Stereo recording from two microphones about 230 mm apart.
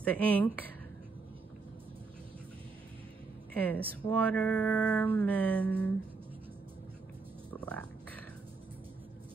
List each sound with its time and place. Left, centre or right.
0.0 s speech: centre
3.5 s speech: centre
7.5 s a sound: centre